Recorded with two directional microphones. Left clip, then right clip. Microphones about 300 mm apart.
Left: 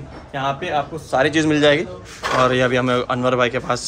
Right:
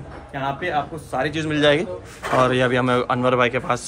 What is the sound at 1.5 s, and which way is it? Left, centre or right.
Speech, centre.